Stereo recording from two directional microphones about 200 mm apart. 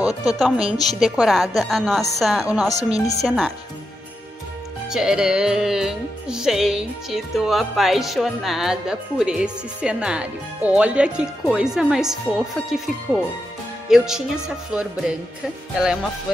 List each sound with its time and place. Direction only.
0.4 s music: centre (ahead or behind)
4.8 s music: 5° right (ahead or behind)